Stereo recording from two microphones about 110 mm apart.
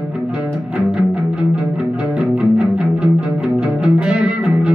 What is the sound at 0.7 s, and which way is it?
Music, 10° right (ahead or behind).